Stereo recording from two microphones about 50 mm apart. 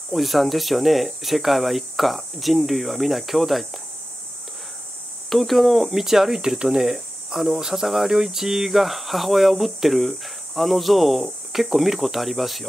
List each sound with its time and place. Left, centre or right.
0.1 s speech: centre
5.3 s speech: centre